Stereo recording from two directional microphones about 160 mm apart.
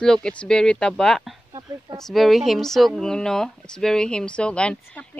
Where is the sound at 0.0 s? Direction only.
5° left (ahead or behind).